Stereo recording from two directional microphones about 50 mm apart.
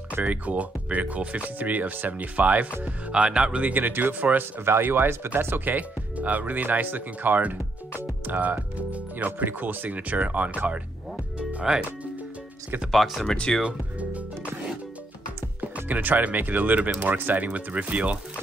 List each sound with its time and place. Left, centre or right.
0.1 s speech: right
5.8 s speech: right
12.9 s speech: centre
13.2 s speech: centre
13.6 s speech: right
15.6 s speech: right